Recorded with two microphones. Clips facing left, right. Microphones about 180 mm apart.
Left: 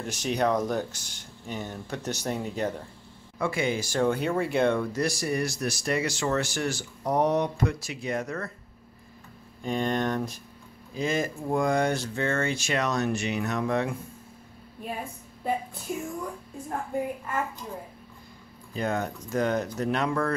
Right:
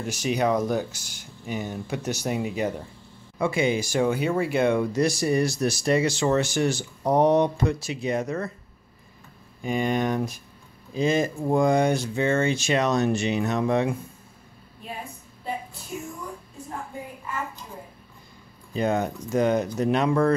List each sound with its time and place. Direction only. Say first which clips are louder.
0.0 s speech: right 2 dB; 5° right (ahead or behind)
3.3 s speech: right 4 dB; 20° right (ahead or behind)
4.9 s speech: right 5 dB; 20° right (ahead or behind)
9.6 s speech: right 3 dB; 10° right (ahead or behind)
11.0 s speech: right 5 dB; 20° right (ahead or behind)
18.7 s speech: right 5 dB; 20° right (ahead or behind)